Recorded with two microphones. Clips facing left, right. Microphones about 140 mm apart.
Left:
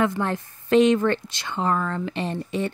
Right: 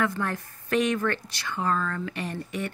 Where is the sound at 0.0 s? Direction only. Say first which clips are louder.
Left 4 dB; 25° left (ahead or behind).